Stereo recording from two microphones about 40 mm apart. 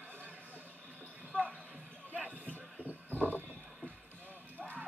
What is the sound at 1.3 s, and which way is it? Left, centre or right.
Basketball bounce, right.